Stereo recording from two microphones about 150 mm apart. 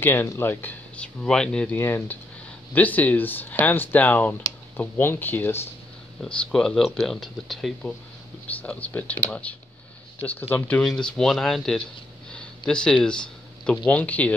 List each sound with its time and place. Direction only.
0.0 s speech: 15° left (ahead or behind)